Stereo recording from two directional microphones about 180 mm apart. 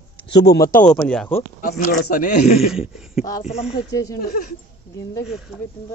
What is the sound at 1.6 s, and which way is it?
A man's voice, 55° left (ahead or behind).